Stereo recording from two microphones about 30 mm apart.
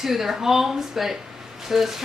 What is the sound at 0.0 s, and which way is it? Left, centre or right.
A woman's voice, centre.